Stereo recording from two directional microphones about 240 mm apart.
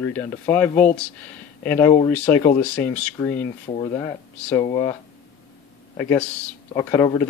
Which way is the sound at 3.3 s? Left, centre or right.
Left.